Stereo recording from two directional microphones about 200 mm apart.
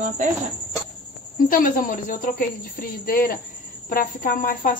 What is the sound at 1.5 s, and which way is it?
Speech, 45° left (ahead or behind).